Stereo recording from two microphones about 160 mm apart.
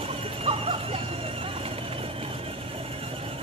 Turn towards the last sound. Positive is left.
turn(degrees=-35)  # may be behind; listen again after turning